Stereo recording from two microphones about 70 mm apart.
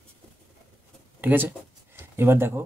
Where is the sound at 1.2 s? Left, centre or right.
Right.